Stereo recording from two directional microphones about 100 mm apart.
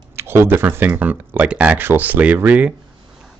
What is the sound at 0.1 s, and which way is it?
Speech, 25° right (ahead or behind).